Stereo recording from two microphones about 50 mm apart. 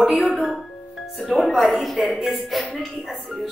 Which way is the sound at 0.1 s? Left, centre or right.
Right.